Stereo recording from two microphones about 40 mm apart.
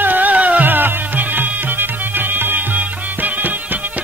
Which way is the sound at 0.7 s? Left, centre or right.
Right.